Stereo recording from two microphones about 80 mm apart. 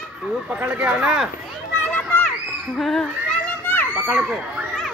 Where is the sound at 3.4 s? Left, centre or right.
Left.